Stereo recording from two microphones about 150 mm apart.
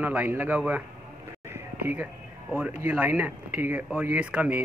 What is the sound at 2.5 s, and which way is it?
Speech, 15° right (ahead or behind).